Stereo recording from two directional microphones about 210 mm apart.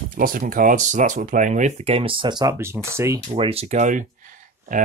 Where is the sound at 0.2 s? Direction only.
40° right (ahead or behind); by 3.2 s 15° right (ahead or behind).